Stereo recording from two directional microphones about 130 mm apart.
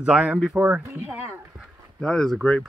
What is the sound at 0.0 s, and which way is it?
Speech, 10° right (ahead or behind).